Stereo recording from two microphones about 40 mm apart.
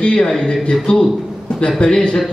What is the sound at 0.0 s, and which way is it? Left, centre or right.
Speech, left.